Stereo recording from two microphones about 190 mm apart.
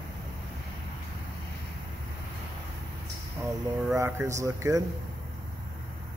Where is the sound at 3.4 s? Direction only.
15° right (ahead or behind).